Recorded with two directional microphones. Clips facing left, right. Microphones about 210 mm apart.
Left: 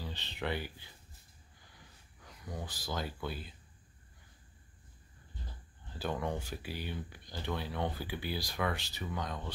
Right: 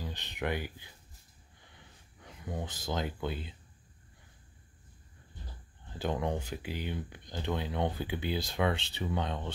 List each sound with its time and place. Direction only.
0.0 s speech: 15° right (ahead or behind)
2.2 s speech: 25° right (ahead or behind)
5.9 s speech: 20° right (ahead or behind)